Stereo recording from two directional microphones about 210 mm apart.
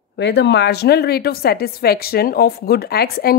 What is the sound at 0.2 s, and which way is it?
A woman's voice, 55° left (ahead or behind).